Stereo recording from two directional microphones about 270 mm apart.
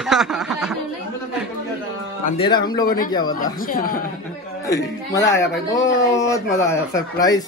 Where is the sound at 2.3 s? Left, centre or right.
Centre.